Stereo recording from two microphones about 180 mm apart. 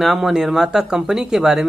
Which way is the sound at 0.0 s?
Centre (ahead or behind).